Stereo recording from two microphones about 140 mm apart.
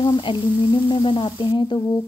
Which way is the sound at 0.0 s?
35° left (ahead or behind).